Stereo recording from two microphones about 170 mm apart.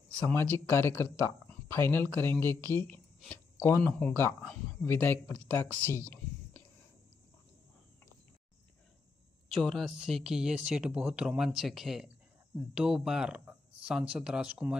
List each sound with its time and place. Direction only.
0.3 s speech: 15° left (ahead or behind)
5.5 s a sound: 10° left (ahead or behind)
9.5 s speech: centre (ahead or behind)